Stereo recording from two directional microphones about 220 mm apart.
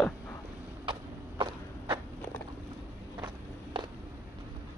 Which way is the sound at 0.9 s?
20° right (ahead or behind).